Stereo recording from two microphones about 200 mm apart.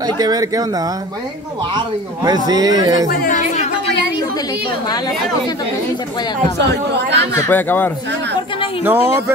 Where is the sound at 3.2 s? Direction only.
40° left (ahead or behind).